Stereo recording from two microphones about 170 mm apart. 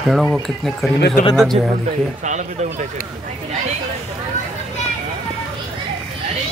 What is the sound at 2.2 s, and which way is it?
Speech, 45° right (ahead or behind).